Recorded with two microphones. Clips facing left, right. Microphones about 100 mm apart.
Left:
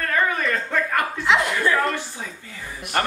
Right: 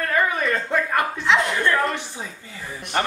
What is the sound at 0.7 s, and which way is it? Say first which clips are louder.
Speech: right 1 dB; 20° right (ahead or behind).